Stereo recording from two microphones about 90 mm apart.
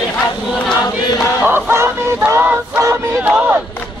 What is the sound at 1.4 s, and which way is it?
Fowl, 25° right (ahead or behind).